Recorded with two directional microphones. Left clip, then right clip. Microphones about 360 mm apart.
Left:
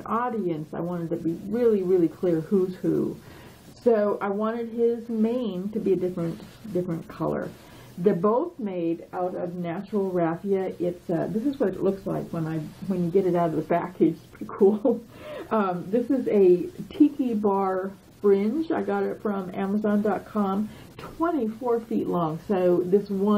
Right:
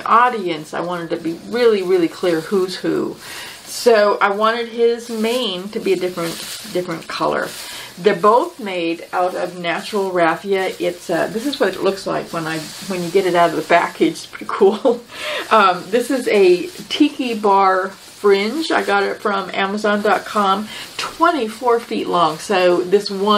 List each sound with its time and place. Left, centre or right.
0.0 s speech: centre
14.7 s speech: centre
15.2 s speech: centre